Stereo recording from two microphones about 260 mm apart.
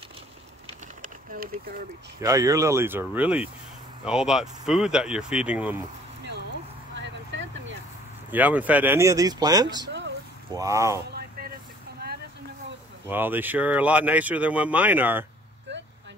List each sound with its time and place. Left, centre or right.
1.0 s a sound: right
2.2 s speech: centre
7.0 s vehicle: right
8.3 s speech: centre
9.8 s a sound: right
10.5 s speech: centre
11.1 s vehicle: right
13.1 s speech: centre
15.7 s vehicle: right